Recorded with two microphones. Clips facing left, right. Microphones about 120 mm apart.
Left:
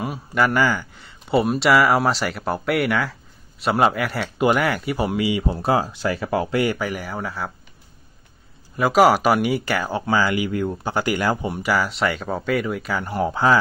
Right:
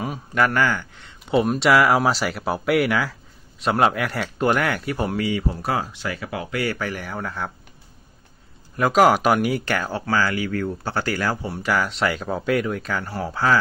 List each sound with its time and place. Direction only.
0.0 s speech: 5° left (ahead or behind)
5.5 s speech: 30° left (ahead or behind)
6.5 s speech: 20° left (ahead or behind); by 7.5 s 5° left (ahead or behind)
8.7 s speech: 5° left (ahead or behind)
11.7 s speech: centre (ahead or behind)
13.0 s speech: 15° left (ahead or behind)